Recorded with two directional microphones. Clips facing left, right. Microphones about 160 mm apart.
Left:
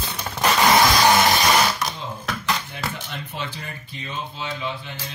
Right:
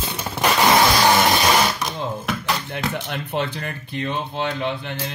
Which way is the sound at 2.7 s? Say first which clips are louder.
Right 5 dB; 60° right (ahead or behind).